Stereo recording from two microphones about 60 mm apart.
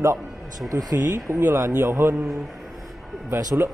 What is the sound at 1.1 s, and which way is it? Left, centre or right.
Speech, right.